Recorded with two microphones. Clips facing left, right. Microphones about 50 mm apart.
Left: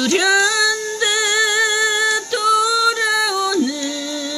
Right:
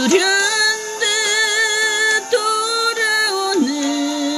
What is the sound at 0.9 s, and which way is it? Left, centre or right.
Music, centre.